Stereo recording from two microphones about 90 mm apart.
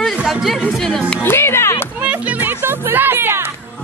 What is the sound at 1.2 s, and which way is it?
Speech, 25° left (ahead or behind).